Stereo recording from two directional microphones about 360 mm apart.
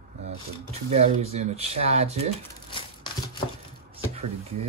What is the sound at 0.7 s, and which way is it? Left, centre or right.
Speech, centre.